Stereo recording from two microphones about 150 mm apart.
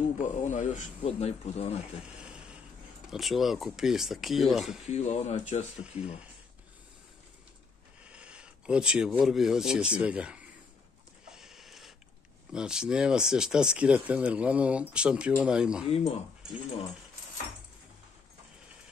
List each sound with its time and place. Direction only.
0.2 s speech: 55° left (ahead or behind)
2.0 s a sound: 5° right (ahead or behind)
3.1 s speech: centre (ahead or behind)
4.9 s speech: 50° left (ahead or behind)
5.8 s speech: 5° right (ahead or behind)
8.0 s speech: 5° right (ahead or behind)
11.2 s a sound: 5° right (ahead or behind)
12.5 s speech: 5° right (ahead or behind)
15.9 s speech: 40° left (ahead or behind)